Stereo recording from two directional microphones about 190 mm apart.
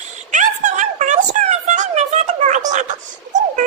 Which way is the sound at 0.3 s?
40° right (ahead or behind).